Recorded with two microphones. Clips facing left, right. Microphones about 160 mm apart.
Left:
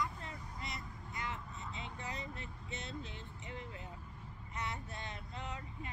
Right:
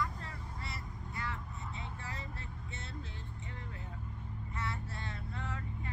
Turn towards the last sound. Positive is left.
turn(degrees=20)  # may be behind; listen again after turning